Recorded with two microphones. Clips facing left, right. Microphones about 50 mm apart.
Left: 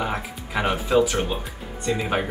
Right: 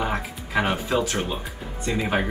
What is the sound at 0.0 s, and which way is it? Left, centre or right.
Music, centre.